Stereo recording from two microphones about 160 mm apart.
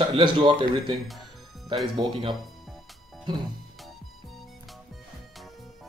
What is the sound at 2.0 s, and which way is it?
Speech, 30° right (ahead or behind).